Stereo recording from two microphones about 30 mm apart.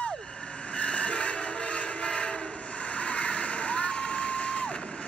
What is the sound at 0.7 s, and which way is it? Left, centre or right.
Train, left.